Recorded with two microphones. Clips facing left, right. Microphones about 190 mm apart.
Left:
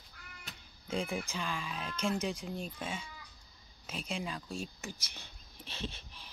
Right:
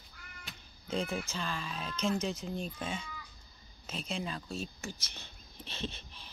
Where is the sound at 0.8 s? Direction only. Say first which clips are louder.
Right 1 dB; 10° left (ahead or behind).